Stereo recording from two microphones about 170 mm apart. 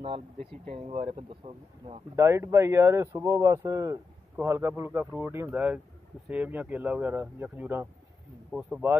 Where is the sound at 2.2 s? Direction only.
15° right (ahead or behind).